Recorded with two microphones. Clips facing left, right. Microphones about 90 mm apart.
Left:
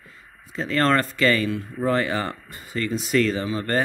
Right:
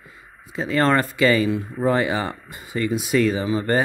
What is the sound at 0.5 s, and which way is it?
Speech, 15° right (ahead or behind).